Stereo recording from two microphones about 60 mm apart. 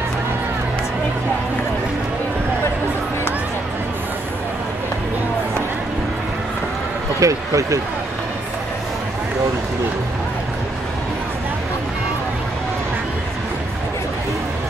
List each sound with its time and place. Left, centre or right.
7.2 s speech: right